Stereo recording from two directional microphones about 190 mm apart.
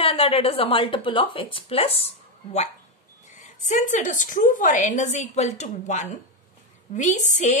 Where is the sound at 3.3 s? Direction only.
40° left (ahead or behind).